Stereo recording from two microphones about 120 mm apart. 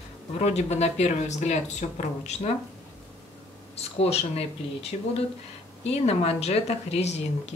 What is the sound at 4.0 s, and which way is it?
Speech, 60° left (ahead or behind).